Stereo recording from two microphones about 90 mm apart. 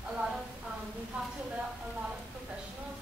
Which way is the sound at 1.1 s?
15° right (ahead or behind).